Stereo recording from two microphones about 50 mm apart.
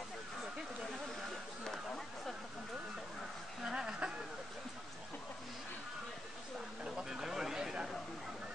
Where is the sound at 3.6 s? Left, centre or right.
Centre.